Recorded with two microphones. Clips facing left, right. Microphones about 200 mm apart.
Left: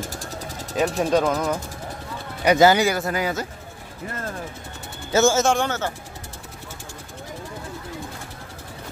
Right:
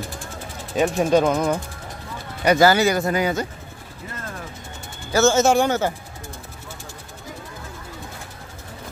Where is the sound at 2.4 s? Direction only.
15° left (ahead or behind).